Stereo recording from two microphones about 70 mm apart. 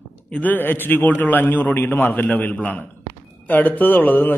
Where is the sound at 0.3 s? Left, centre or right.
Left.